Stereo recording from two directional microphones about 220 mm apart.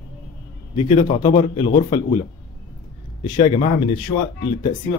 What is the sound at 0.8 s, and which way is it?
A man's voice, 20° left (ahead or behind).